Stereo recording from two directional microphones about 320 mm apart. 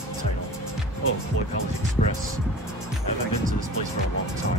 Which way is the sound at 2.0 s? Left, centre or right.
Left.